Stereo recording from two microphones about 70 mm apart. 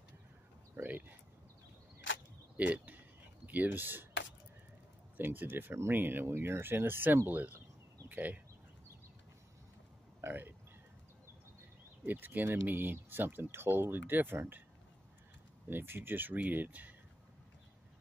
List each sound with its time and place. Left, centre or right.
0.8 s a sound: right
2.5 s speech: right
5.1 s speech: right
10.2 s speech: right
12.0 s speech: right
15.7 s speech: right